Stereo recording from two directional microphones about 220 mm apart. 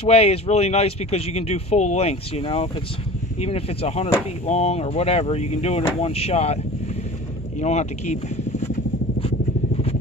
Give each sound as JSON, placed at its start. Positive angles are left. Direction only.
{"t": 0.0, "sound": "speech", "side_deg": 25}
{"t": 7.6, "sound": "speech", "side_deg": 30}